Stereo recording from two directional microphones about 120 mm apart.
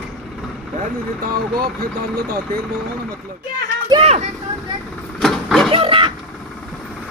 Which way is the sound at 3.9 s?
35° right (ahead or behind).